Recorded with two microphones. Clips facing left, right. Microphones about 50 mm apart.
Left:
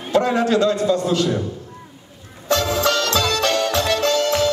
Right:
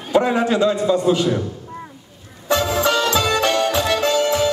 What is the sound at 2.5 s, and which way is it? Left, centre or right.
Music, centre.